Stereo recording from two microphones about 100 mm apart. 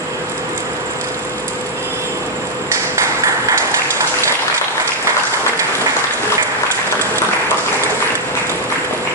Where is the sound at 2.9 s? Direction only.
30° right (ahead or behind).